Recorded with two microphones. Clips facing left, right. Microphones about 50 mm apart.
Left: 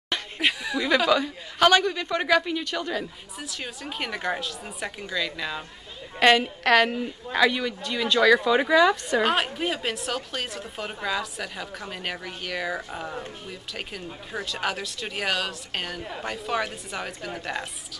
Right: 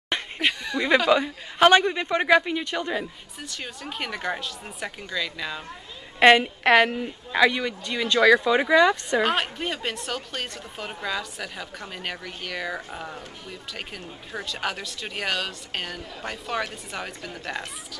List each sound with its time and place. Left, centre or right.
0.4 s a sound: centre
0.8 s a man's voice: centre
3.4 s a woman's voice: centre
6.1 s a woman's voice: centre